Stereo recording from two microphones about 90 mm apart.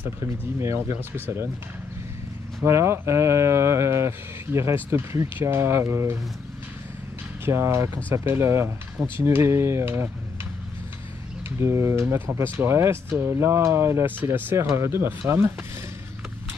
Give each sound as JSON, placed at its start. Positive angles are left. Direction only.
{"t": 0.6, "sound": "speech", "side_deg": -30}
{"t": 2.6, "sound": "speech", "side_deg": -30}
{"t": 7.4, "sound": "speech", "side_deg": -30}
{"t": 11.4, "sound": "speech", "side_deg": -30}